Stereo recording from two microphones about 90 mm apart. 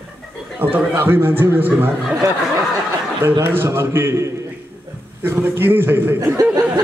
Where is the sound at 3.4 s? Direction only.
25° right (ahead or behind).